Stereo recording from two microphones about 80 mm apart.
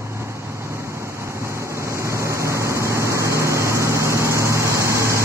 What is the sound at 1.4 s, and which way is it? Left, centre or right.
Vehicle, right.